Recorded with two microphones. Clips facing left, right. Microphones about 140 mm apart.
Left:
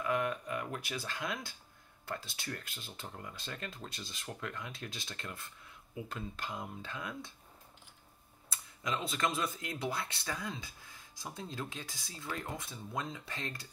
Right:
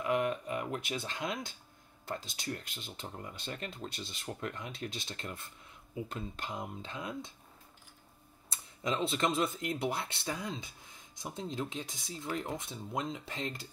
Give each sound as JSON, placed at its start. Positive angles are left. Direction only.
{"t": 0.0, "sound": "a sound", "side_deg": -20}
{"t": 2.0, "sound": "speech", "side_deg": -20}
{"t": 8.5, "sound": "speech", "side_deg": -25}